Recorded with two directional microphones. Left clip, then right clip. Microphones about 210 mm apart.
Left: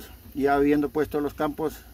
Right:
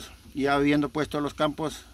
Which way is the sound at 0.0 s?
10° right (ahead or behind).